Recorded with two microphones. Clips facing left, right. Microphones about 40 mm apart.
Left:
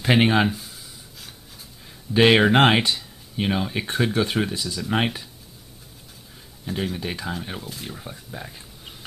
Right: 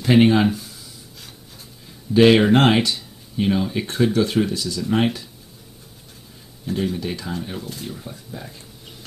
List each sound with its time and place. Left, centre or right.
0.0 s speech: left
0.5 s a sound: centre
2.1 s speech: left
6.7 s speech: centre